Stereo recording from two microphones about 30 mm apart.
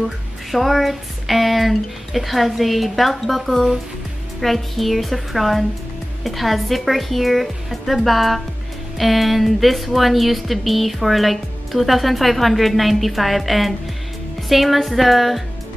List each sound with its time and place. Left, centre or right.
0.5 s speech: centre